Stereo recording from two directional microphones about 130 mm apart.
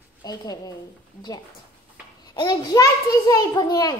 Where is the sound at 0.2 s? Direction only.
30° left (ahead or behind).